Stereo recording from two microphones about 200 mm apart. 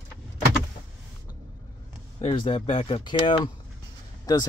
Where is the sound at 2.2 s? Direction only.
25° left (ahead or behind).